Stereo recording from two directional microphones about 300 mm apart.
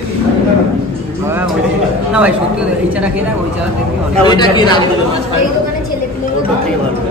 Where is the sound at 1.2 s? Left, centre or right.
Centre.